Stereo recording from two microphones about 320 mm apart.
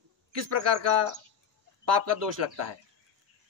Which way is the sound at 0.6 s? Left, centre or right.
Right.